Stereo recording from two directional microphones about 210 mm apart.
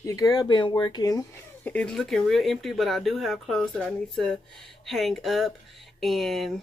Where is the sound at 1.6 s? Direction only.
5° left (ahead or behind).